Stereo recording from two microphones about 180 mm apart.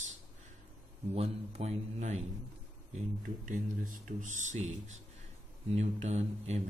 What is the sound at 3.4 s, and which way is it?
A man's voice, 45° right (ahead or behind).